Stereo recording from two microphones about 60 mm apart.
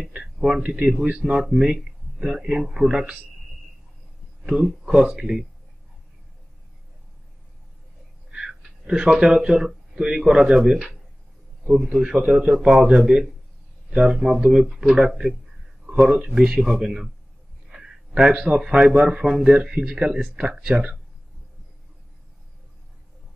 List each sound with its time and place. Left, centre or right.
0.1 s speech: centre
1.4 s speech: centre
4.4 s speech: centre
4.9 s speech: centre
8.3 s speech: centre
17.6 s a sound: centre
18.6 s speech: centre